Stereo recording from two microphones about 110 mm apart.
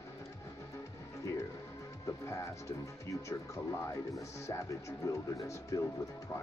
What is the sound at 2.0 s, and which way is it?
Speech, 25° left (ahead or behind).